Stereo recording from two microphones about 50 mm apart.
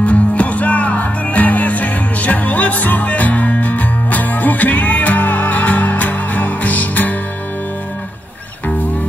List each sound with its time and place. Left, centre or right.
0.0 s music: left